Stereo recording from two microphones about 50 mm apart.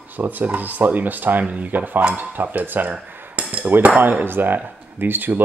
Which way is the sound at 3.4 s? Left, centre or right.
Right.